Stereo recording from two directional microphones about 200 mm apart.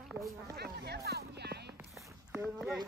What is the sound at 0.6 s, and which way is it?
Music, 55° right (ahead or behind).